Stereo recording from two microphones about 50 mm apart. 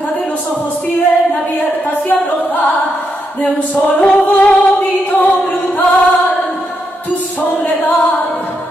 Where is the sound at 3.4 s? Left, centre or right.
Left.